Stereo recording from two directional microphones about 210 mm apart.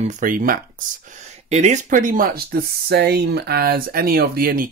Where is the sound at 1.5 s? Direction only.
30° right (ahead or behind).